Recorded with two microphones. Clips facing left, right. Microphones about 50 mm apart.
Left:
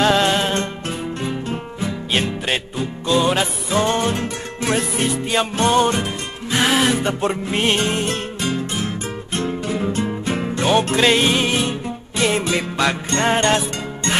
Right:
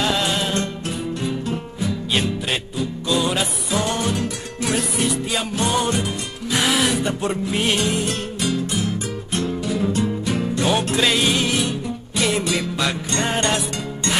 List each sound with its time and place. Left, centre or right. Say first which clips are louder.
0.0 s music: left 5 dB; left
6.6 s music: left 3 dB; centre
6.9 s music: left 2 dB; left
11.1 s music: left 3 dB; left